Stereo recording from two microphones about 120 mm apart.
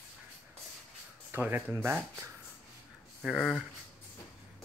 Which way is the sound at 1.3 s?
15° right (ahead or behind).